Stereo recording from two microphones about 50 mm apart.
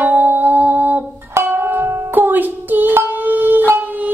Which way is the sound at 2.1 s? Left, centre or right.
Right.